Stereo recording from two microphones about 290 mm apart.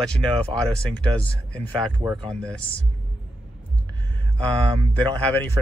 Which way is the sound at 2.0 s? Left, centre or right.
Centre.